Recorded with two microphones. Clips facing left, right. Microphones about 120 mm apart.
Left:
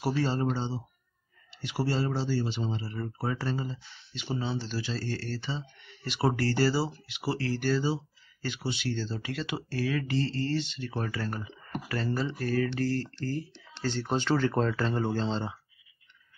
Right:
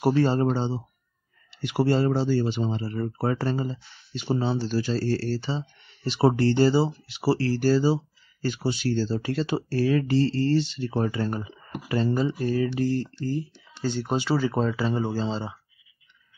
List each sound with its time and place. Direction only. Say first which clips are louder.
0.0 s speech: right 7 dB; 50° right (ahead or behind); by 6.9 s 25° right (ahead or behind)
7.1 s speech: right 7 dB; 35° right (ahead or behind); by 15.5 s 5° right (ahead or behind)